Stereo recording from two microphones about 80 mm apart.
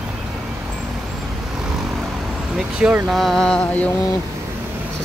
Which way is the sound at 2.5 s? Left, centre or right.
Centre.